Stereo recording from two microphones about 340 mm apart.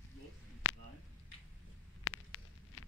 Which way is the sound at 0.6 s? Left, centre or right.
Left.